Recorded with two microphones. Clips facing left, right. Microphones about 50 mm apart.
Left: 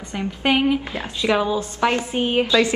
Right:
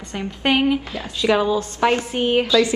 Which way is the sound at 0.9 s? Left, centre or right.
Left.